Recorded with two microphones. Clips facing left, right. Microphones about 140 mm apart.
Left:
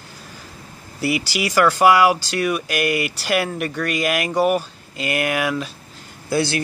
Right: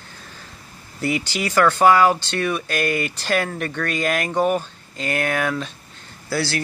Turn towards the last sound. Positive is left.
turn(degrees=20)  # may be behind; listen again after turning